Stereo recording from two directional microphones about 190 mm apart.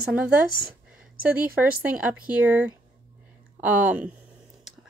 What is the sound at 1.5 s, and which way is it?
A woman's voice, 10° right (ahead or behind).